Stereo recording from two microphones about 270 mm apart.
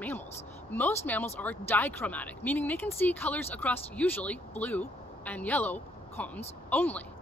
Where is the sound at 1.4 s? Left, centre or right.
Centre.